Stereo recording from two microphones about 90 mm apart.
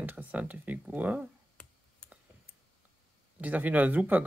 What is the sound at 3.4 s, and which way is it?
Speech, 15° right (ahead or behind).